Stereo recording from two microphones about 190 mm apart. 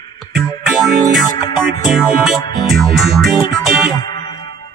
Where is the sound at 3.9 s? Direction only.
25° left (ahead or behind).